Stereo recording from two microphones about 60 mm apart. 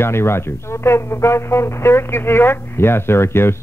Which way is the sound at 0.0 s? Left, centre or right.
Left.